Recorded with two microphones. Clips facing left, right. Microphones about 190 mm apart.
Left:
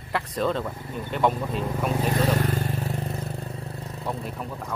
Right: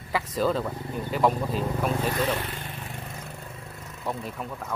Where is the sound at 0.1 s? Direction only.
Centre (ahead or behind).